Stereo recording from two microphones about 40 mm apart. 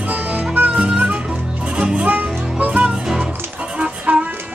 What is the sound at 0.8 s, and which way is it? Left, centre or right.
Music, right.